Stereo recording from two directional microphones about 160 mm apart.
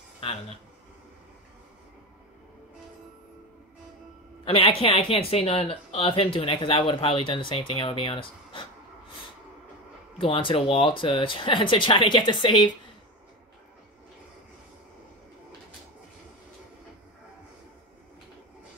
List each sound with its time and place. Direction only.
0.2 s speech: 35° left (ahead or behind)
4.5 s speech: 35° left (ahead or behind)
10.1 s speech: 35° left (ahead or behind)